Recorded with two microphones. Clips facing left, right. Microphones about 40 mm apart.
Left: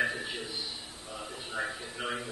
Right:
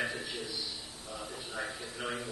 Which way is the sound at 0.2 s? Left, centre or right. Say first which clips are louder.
Left 2 dB; left.